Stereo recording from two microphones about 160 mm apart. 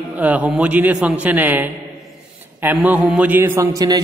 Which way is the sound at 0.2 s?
10° right (ahead or behind).